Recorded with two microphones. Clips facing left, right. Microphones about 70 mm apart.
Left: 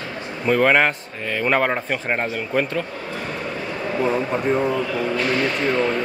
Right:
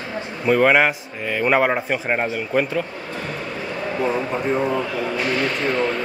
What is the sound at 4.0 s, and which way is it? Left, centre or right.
Speech, centre.